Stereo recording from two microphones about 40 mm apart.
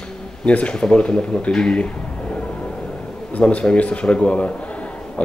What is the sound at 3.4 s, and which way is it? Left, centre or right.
Speech, left.